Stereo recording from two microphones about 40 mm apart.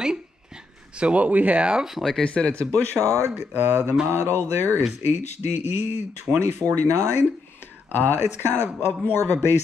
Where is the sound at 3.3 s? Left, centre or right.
Right.